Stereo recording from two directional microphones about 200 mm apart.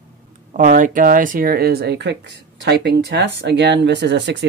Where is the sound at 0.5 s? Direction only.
40° right (ahead or behind).